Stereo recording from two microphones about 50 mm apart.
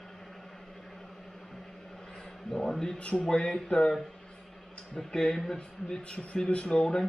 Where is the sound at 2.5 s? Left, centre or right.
Centre.